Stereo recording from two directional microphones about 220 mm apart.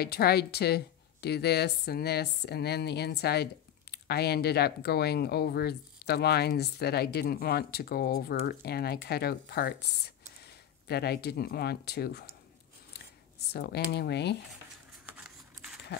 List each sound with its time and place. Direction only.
0.0 s speech: 45° left (ahead or behind)
13.5 s speech: 45° left (ahead or behind)
15.0 s a sound: 5° right (ahead or behind)